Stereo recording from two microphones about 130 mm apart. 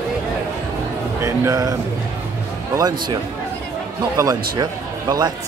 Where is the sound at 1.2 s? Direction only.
20° right (ahead or behind).